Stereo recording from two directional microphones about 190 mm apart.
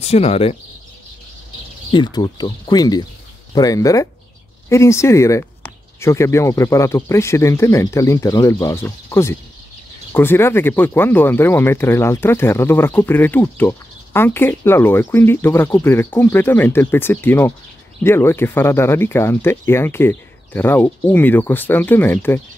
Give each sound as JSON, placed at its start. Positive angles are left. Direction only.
{"t": 0.0, "sound": "speech", "side_deg": 35}
{"t": 1.9, "sound": "speech", "side_deg": 25}